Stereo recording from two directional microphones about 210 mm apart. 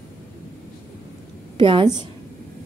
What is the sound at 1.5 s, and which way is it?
Speech, 25° right (ahead or behind).